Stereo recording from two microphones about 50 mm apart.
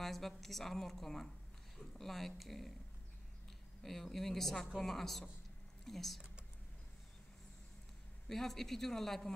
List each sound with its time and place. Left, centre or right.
0.0 s a sound: centre
0.4 s a man's voice: centre
3.8 s speech: centre
8.3 s a man's voice: centre